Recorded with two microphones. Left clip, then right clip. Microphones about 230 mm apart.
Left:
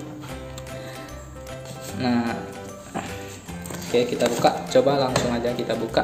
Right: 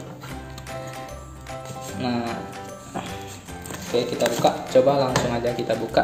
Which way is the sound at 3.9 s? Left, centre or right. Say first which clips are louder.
Left 1 dB; centre.